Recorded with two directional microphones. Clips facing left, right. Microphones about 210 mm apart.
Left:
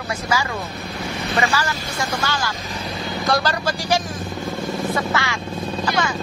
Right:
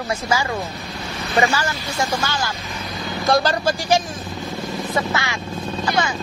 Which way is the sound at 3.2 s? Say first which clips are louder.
Right 4 dB; 25° right (ahead or behind).